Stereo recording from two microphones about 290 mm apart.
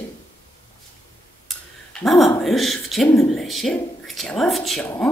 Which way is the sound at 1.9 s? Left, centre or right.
Centre.